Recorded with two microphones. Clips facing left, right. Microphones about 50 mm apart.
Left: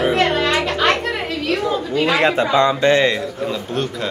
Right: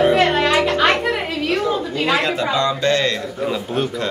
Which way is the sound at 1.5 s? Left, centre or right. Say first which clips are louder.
Even; centre.